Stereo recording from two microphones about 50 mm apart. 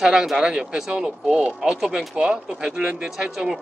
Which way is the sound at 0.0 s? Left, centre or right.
Centre.